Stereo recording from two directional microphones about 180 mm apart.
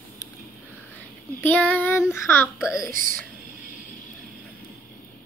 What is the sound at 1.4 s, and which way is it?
Child singing, 10° left (ahead or behind).